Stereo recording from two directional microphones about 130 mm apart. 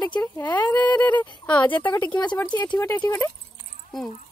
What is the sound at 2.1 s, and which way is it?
Speech, 35° left (ahead or behind).